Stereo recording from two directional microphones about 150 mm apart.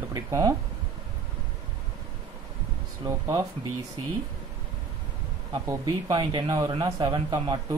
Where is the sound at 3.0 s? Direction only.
25° right (ahead or behind).